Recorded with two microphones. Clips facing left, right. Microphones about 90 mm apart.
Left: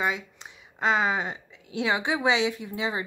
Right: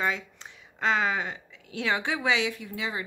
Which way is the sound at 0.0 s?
15° left (ahead or behind).